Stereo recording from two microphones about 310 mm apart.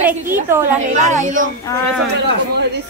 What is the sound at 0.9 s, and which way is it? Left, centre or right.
Speech, right.